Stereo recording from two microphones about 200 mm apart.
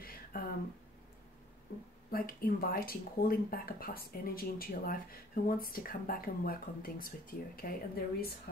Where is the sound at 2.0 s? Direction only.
45° left (ahead or behind).